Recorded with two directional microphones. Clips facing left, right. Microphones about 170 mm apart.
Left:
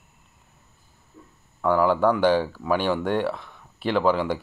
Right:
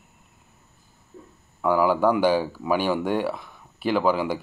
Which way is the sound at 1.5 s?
5° right (ahead or behind).